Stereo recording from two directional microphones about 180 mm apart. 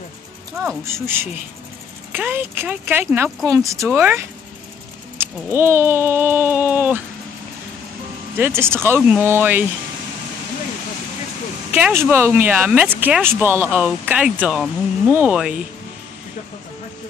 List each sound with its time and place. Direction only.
0.7 s speech: 15° right (ahead or behind)
8.4 s speech: 15° right (ahead or behind)
11.7 s speech: 10° right (ahead or behind)